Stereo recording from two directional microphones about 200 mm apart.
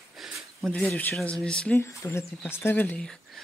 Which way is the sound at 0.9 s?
10° left (ahead or behind).